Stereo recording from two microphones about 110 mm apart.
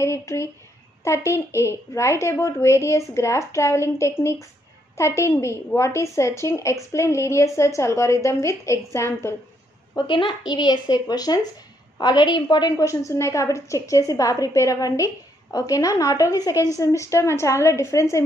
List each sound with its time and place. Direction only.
0.0 s a woman's voice: 25° left (ahead or behind)
9.9 s a child's voice: 45° left (ahead or behind); by 18.2 s 25° left (ahead or behind)